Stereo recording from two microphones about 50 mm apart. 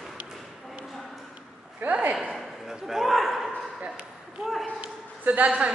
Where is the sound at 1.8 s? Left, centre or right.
Right.